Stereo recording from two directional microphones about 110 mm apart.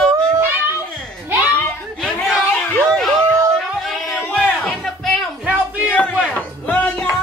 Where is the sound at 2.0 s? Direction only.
10° left (ahead or behind).